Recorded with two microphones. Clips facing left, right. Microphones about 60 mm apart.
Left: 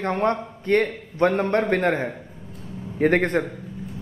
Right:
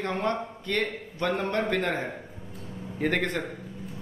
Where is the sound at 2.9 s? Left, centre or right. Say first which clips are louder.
Left 8 dB; left.